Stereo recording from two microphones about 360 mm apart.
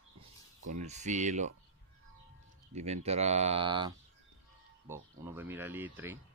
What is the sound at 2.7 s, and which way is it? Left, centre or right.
Speech, centre.